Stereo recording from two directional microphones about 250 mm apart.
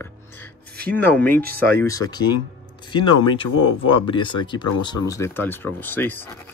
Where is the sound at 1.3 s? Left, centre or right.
Right.